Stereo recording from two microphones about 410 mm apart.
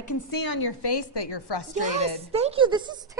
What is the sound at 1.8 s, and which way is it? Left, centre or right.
A woman's voice, centre.